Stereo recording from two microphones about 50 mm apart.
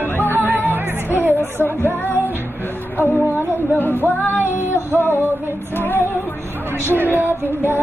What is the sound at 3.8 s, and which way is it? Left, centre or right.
Music, left.